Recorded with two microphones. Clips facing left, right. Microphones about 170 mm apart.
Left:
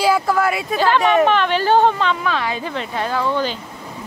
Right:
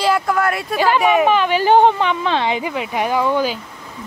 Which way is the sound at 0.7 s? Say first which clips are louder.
Even; 10° right (ahead or behind).